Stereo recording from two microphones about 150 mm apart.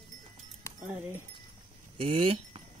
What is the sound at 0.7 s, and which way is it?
Music, 20° left (ahead or behind).